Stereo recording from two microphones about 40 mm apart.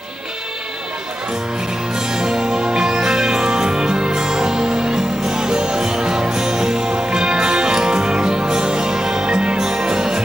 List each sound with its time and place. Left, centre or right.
2.0 s music: centre